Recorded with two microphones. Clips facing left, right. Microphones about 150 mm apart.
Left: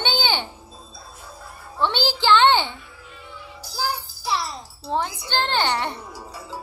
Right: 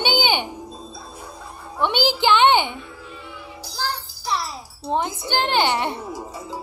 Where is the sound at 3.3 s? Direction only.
15° right (ahead or behind).